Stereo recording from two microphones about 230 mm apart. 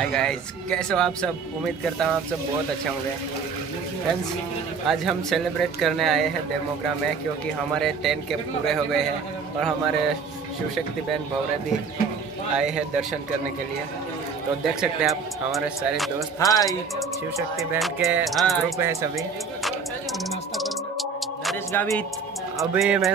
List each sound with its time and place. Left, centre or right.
0.0 s speech: centre
4.8 s speech: centre
7.7 s speech: centre
12.5 s speech: centre
14.6 s speech: centre
16.3 s speech: centre
17.6 s speech: centre
18.8 s speech: centre
20.2 s music: centre
22.6 s speech: centre